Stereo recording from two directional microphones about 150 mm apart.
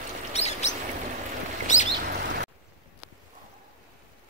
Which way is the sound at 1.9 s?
90° right.